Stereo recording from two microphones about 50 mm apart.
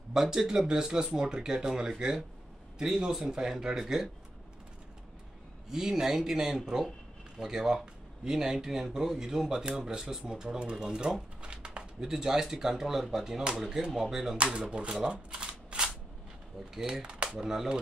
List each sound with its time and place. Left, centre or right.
0.1 s speech: centre
5.7 s speech: centre
14.3 s speech: right